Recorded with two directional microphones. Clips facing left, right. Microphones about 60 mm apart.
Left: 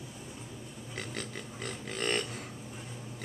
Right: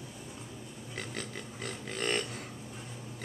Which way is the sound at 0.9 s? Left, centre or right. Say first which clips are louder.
Even; centre.